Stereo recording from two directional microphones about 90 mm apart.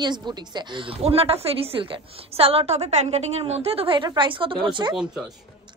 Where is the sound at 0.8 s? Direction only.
90° right.